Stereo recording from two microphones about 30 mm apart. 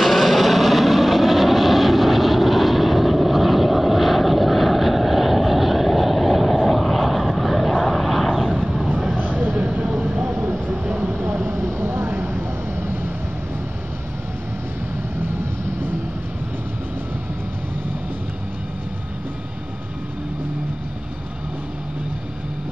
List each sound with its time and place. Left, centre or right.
0.0 s vehicle: centre
9.1 s vehicle: right
9.7 s vehicle: right
11.1 s vehicle: right